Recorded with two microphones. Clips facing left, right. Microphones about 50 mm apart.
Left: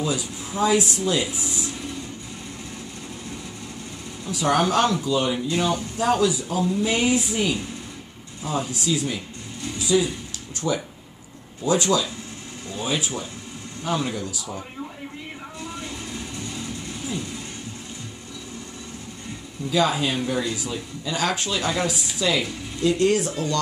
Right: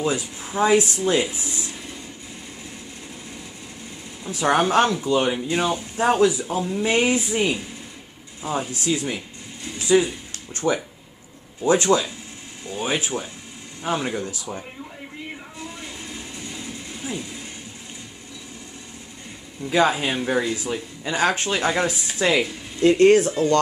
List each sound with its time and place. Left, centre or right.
0.0 s speech: right
4.3 s speech: right
9.8 s a sound: right
10.5 s speech: right
16.2 s vehicle: centre
19.6 s speech: right